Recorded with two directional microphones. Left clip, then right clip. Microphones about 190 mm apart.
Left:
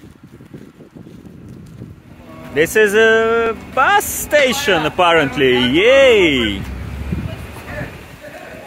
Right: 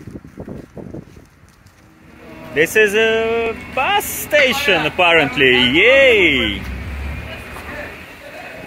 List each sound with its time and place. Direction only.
2.5 s speech: 15° left (ahead or behind)